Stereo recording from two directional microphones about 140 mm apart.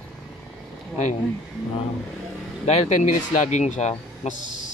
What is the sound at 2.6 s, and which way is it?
Speech, 50° left (ahead or behind).